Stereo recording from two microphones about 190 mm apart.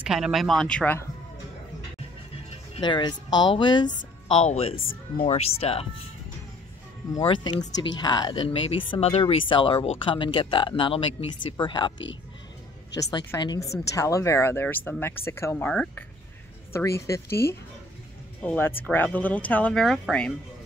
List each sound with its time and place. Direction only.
0.0 s speech: centre (ahead or behind)
2.7 s speech: 25° left (ahead or behind)
7.2 s speech: 25° left (ahead or behind)
13.1 s speech: 20° left (ahead or behind); by 20.3 s 5° left (ahead or behind)